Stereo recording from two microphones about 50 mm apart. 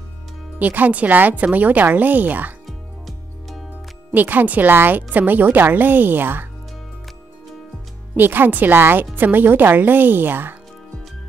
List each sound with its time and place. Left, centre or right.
0.6 s speech: right
2.6 s music: centre
4.1 s speech: right
8.2 s speech: right